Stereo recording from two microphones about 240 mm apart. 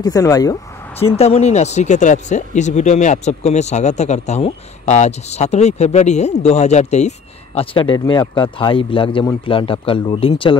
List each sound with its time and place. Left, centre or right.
0.0 s speech: centre
1.1 s speech: left